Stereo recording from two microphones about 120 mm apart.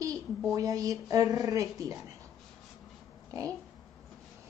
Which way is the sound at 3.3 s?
25° right (ahead or behind).